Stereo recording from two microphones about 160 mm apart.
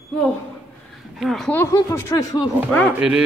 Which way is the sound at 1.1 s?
Centre (ahead or behind).